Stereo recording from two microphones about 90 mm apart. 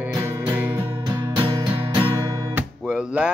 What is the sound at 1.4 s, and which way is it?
Music, 50° right (ahead or behind).